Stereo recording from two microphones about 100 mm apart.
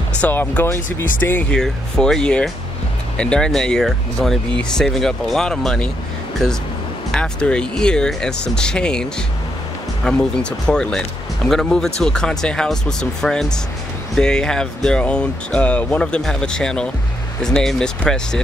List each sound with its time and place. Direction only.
0.2 s speech: 15° left (ahead or behind)
1.5 s speech: 5° left (ahead or behind)
7.1 s speech: 10° left (ahead or behind)
10.0 s speech: 10° left (ahead or behind)